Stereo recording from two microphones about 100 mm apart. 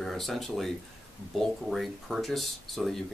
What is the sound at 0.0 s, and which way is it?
Speech, centre (ahead or behind).